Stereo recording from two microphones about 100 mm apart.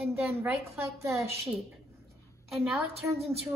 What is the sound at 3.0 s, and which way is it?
Speech, 15° right (ahead or behind).